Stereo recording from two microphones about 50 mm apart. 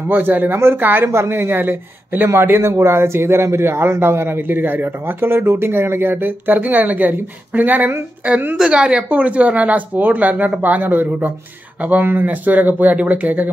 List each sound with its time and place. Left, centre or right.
0.1 s speech: right
1.0 s a man's voice: right
2.2 s a man's voice: right
8.5 s speech: centre